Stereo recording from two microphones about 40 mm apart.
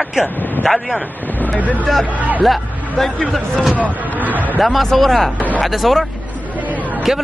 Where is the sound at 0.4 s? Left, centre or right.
Left.